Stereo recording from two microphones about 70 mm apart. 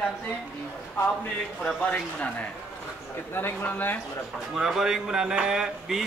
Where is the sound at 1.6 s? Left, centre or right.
Left.